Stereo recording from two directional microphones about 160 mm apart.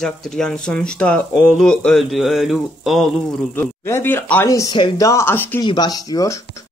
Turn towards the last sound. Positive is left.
turn(degrees=20)  # may be behind; listen again after turning